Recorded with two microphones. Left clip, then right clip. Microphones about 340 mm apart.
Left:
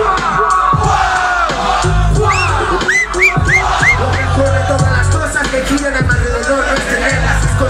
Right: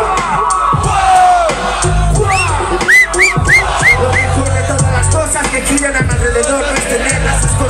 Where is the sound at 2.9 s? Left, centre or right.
Centre.